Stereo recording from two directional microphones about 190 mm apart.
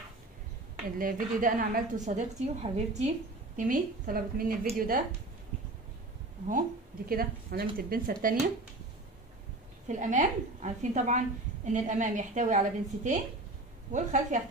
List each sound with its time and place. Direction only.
0.8 s a woman's voice: 45° right (ahead or behind)
7.1 s a woman's voice: 50° right (ahead or behind)
9.8 s a woman's voice: 40° right (ahead or behind)